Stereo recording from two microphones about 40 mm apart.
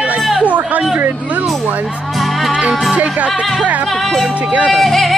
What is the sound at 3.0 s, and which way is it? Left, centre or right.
Music, right.